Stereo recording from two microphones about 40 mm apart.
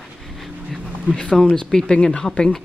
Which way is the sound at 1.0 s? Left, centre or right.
Left.